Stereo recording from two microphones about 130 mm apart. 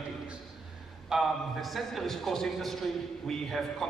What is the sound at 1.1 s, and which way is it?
A man's voice, centre (ahead or behind).